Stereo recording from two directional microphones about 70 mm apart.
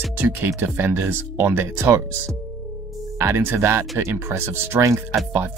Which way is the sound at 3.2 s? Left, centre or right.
Right.